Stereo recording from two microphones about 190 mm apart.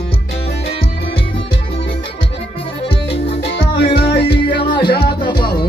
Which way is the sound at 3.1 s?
30° left (ahead or behind).